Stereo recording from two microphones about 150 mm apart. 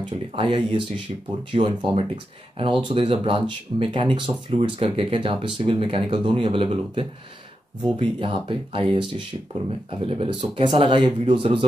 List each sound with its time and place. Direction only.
0.4 s speech: 35° right (ahead or behind)